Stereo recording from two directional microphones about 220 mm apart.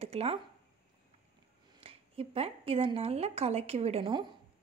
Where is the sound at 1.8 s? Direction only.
25° right (ahead or behind).